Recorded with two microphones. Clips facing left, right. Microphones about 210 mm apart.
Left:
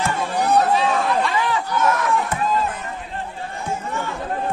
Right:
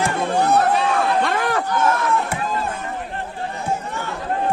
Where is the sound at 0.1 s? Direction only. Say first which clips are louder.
Right 1 dB; 55° right (ahead or behind).